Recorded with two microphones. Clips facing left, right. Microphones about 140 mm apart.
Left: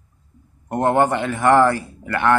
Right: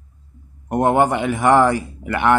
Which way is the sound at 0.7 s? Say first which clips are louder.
Right 1 dB; 10° right (ahead or behind).